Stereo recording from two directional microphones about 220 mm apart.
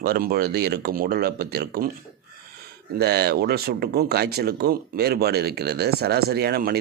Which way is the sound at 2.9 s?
45° right (ahead or behind).